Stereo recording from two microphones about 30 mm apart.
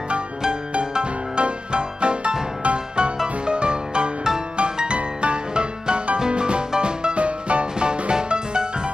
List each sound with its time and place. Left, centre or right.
0.9 s music: right
7.2 s music: right